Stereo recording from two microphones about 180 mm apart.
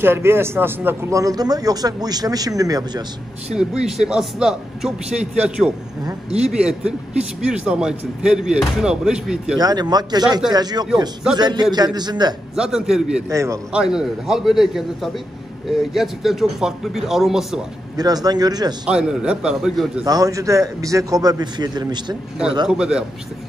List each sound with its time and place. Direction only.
0.0 s speech: 15° right (ahead or behind)
3.5 s a man's voice: 5° right (ahead or behind)
9.6 s speech: 20° right (ahead or behind)
12.5 s a man's voice: 5° right (ahead or behind)
13.3 s a man's voice: 15° right (ahead or behind)
13.7 s a man's voice: 5° right (ahead or behind)
17.9 s speech: 20° right (ahead or behind)
18.9 s a man's voice: 5° right (ahead or behind)
20.1 s speech: 20° right (ahead or behind)
22.7 s a man's voice: 5° right (ahead or behind)